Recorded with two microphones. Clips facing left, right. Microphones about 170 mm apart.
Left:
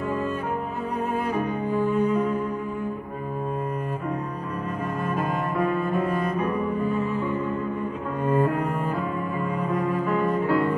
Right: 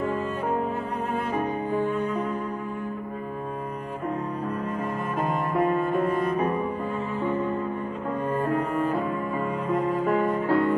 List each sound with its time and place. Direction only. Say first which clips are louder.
10.0 s music: even; 40° right (ahead or behind)